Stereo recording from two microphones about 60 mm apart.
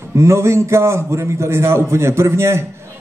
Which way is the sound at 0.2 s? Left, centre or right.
Right.